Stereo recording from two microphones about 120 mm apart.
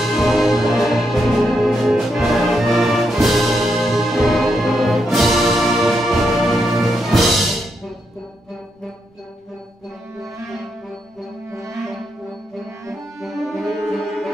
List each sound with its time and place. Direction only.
0.0 s music: centre (ahead or behind)
11.5 s music: 25° right (ahead or behind)
13.2 s music: centre (ahead or behind)